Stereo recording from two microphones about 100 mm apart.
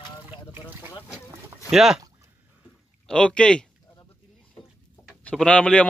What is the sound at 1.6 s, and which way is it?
Speech, 5° right (ahead or behind).